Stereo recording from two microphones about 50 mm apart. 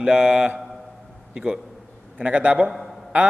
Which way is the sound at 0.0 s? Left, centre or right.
Centre.